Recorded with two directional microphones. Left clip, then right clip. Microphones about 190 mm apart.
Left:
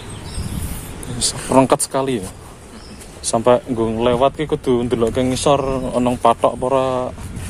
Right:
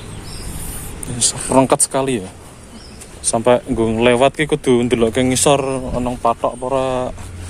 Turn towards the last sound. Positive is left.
turn(degrees=0)  # may be behind; listen again after turning